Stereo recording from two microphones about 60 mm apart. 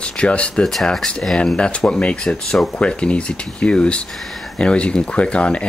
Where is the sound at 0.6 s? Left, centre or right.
Centre.